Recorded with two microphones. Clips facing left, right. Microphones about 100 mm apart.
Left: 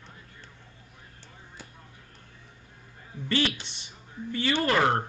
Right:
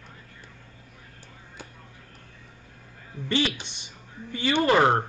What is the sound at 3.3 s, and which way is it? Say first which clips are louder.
Speech: right 1 dB; 20° right (ahead or behind).